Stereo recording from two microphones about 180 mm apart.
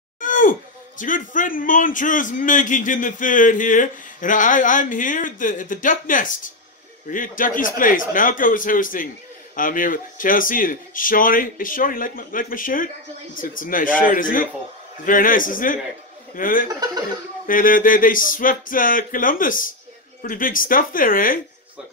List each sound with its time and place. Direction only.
0.2 s speech: 45° left (ahead or behind)